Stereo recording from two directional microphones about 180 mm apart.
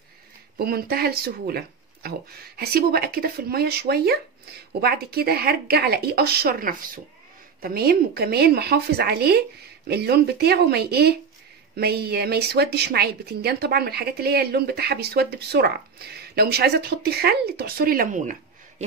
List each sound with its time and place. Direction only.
0.6 s a woman's voice: 60° right (ahead or behind)